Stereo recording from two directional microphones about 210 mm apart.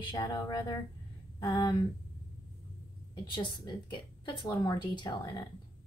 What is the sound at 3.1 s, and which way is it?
Speech, 20° left (ahead or behind).